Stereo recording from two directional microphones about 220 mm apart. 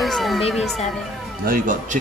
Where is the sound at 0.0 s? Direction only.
Centre (ahead or behind).